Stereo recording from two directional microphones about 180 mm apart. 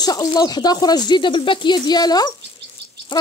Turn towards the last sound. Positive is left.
turn(degrees=25)  # may be behind; listen again after turning